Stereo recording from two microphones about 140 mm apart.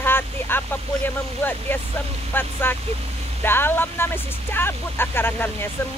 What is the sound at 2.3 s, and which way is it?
Speech, 15° left (ahead or behind).